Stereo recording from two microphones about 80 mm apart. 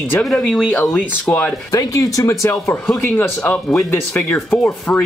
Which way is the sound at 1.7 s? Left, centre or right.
Left.